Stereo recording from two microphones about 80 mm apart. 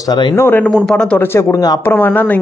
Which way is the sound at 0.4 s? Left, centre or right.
Left.